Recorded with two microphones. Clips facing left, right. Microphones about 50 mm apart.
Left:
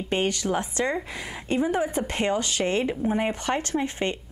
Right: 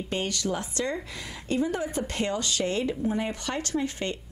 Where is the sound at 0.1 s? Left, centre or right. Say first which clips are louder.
Left 5 dB; left.